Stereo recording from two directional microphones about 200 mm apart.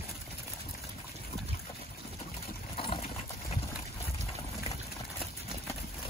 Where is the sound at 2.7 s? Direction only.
25° left (ahead or behind).